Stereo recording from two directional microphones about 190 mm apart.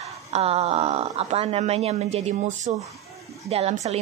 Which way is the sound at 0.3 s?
35° right (ahead or behind).